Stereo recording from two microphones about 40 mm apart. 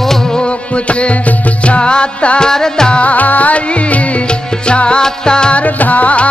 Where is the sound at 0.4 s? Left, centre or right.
Left.